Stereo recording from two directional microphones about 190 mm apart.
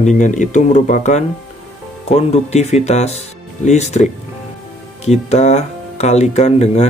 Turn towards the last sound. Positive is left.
turn(degrees=35)  # may be behind; listen again after turning